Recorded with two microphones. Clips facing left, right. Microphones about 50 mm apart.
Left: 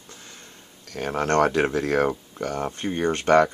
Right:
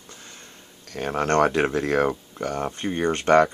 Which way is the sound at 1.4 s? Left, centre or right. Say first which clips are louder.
Even; centre.